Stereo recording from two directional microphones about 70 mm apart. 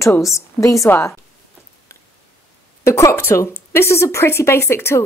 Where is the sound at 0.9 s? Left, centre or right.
Left.